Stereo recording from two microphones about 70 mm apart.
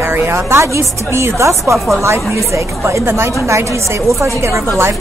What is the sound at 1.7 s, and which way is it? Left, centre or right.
Speech, centre.